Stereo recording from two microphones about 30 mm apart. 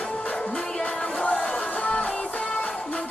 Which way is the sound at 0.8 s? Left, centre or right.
Left.